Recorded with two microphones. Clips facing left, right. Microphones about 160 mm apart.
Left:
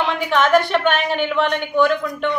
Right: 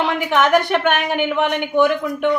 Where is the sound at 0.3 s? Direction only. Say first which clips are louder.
Even; 15° right (ahead or behind).